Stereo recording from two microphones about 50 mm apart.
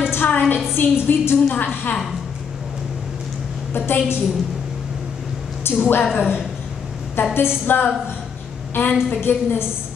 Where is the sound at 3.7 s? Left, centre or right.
Left.